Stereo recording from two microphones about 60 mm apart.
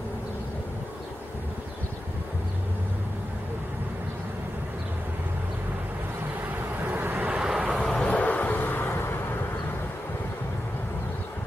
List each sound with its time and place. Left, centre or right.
6.8 s vehicle: right
7.2 s vehicle: centre
7.8 s vehicle: centre
8.1 s vehicle: left